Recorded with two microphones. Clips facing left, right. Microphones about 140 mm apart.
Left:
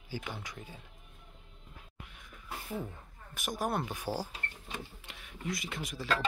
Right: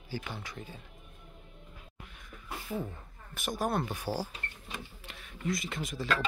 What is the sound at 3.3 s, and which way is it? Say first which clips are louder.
Speech: right 2 dB; 15° left (ahead or behind).